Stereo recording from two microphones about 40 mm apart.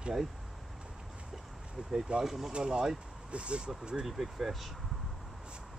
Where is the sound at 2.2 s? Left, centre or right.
Centre.